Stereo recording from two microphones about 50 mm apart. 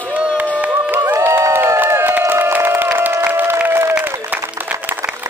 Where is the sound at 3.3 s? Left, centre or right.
Right.